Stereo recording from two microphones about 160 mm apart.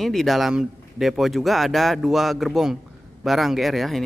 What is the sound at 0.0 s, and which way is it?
Speech, centre (ahead or behind).